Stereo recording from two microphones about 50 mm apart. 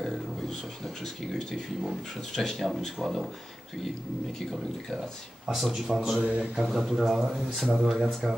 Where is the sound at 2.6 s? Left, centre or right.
Centre.